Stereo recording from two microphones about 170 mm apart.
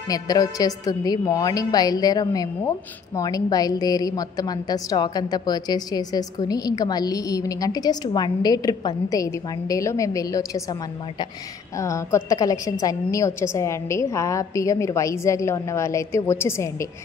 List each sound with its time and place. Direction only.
0.1 s a woman's voice: 20° left (ahead or behind)